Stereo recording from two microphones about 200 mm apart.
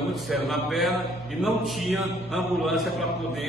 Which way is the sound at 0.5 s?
Centre (ahead or behind).